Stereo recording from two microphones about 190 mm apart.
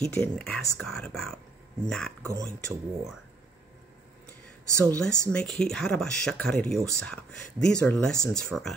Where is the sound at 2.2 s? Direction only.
15° right (ahead or behind).